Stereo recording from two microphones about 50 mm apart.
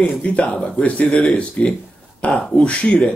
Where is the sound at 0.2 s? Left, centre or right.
Left.